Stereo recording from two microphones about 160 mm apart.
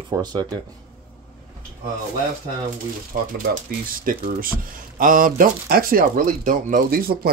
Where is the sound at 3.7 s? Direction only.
60° right (ahead or behind).